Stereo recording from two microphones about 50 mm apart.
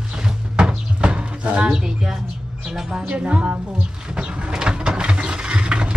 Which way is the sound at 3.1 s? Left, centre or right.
Right.